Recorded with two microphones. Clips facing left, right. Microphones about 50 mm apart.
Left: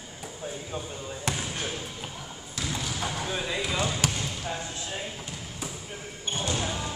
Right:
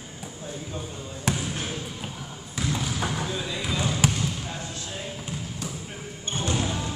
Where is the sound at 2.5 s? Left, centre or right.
Centre.